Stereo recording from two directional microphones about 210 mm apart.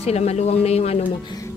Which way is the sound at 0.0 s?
30° left (ahead or behind).